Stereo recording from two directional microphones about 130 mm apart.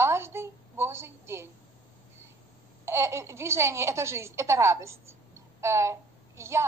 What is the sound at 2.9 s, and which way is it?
A woman's voice, 20° right (ahead or behind).